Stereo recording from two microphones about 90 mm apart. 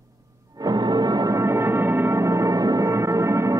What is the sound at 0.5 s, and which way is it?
Music, 50° right (ahead or behind).